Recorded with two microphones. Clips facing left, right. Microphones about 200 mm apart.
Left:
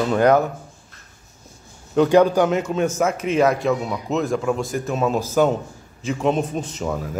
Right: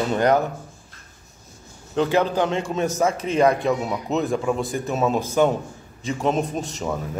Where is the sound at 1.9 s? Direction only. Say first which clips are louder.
Left 6 dB; 10° left (ahead or behind).